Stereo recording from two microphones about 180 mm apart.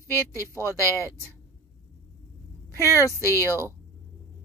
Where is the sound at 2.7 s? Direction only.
15° left (ahead or behind).